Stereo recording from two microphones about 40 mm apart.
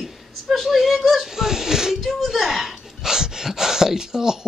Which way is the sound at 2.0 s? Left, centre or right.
Centre.